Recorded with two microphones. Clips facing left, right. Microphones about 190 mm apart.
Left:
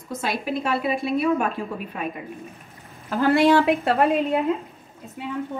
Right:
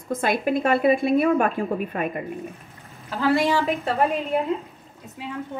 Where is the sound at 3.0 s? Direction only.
60° left (ahead or behind).